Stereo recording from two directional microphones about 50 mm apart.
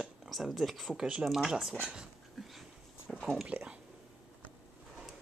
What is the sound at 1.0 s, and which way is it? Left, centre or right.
Speech, centre.